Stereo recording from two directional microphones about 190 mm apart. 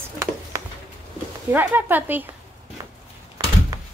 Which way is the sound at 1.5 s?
10° right (ahead or behind).